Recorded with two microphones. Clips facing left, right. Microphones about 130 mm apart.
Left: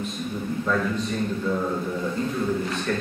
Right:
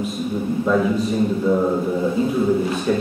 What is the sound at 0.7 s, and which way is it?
Speech, 15° right (ahead or behind).